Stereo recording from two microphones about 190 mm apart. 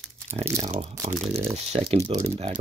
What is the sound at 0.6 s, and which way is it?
Speech, 35° right (ahead or behind).